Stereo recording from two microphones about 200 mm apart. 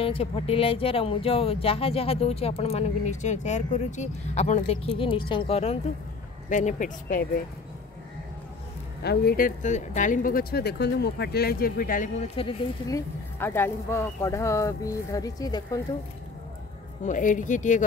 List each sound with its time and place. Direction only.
0.0 s speech: 30° left (ahead or behind)
6.5 s speech: 40° left (ahead or behind)
9.0 s speech: 55° left (ahead or behind)
12.4 s speech: 25° left (ahead or behind)
13.4 s speech: 10° left (ahead or behind)
17.0 s speech: 40° left (ahead or behind)